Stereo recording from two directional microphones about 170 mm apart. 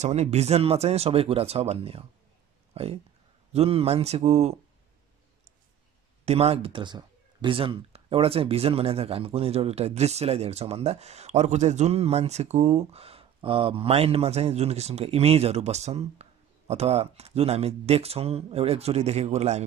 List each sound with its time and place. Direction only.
0.0 s speech: 40° right (ahead or behind)
6.2 s speech: 35° right (ahead or behind)